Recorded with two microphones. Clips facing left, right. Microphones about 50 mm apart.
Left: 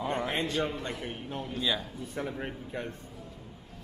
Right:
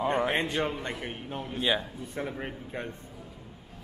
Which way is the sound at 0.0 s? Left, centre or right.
Right.